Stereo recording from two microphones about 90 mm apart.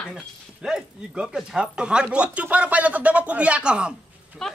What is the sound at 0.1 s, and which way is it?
Speech, 5° right (ahead or behind).